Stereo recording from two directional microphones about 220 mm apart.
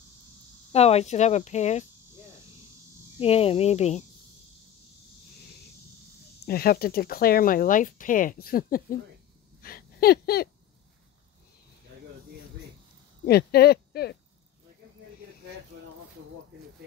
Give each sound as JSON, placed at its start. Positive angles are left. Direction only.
{"t": 0.7, "sound": "speech", "side_deg": 30}
{"t": 3.2, "sound": "speech", "side_deg": 25}
{"t": 6.4, "sound": "speech", "side_deg": 45}
{"t": 9.6, "sound": "a sound", "side_deg": 40}
{"t": 13.2, "sound": "speech", "side_deg": 45}